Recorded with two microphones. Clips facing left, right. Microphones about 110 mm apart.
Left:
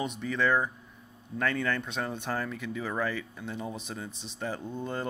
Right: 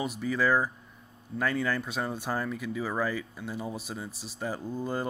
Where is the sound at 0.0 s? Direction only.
5° right (ahead or behind).